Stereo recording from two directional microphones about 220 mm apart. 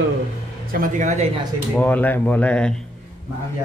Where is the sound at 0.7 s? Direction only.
35° right (ahead or behind).